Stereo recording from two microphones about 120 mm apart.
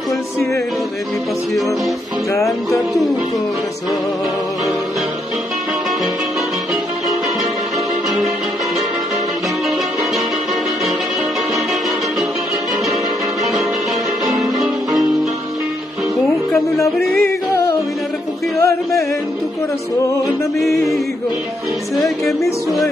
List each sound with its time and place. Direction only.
2.3 s music: 25° left (ahead or behind)
14.2 s music: 30° right (ahead or behind)
17.2 s music: 25° left (ahead or behind)
20.6 s music: centre (ahead or behind)